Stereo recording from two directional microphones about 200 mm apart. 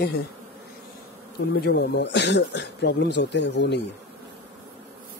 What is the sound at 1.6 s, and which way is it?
Speech, 55° left (ahead or behind).